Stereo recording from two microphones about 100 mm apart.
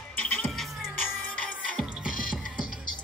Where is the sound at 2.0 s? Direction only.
10° right (ahead or behind).